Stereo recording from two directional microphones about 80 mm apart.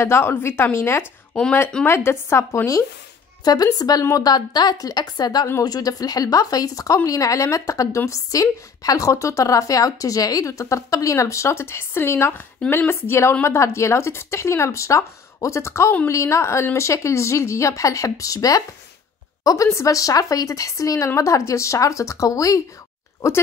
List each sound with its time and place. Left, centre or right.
0.0 s a woman's voice: left
1.3 s speech: centre
1.9 s a woman's voice: left
3.4 s a woman's voice: left